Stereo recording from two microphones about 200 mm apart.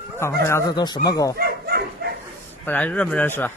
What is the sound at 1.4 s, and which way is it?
Dog, 50° right (ahead or behind).